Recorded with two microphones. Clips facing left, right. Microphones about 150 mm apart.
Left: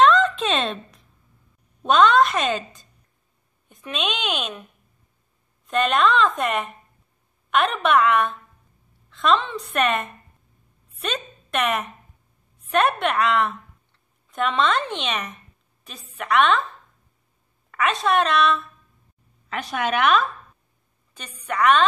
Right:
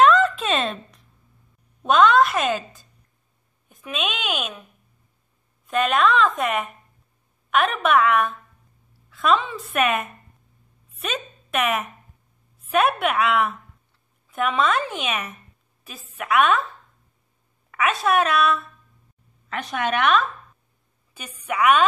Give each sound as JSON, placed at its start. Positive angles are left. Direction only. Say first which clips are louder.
{"t": 0.0, "sound": "a sound", "louder": "even", "side_deg": -5}
{"t": 1.8, "sound": "a woman's voice", "louder": "even", "side_deg": -5}
{"t": 5.7, "sound": "a woman's voice", "louder": "even", "side_deg": -5}
{"t": 17.6, "sound": "a woman's voice", "louder": "even", "side_deg": -5}